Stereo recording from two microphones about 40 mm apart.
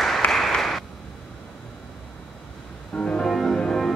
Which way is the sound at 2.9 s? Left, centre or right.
Left.